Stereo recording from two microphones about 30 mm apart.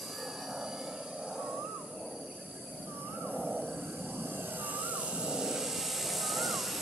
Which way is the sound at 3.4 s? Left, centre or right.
Right.